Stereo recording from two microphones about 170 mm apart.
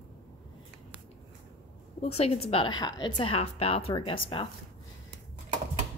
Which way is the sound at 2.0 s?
35° left (ahead or behind).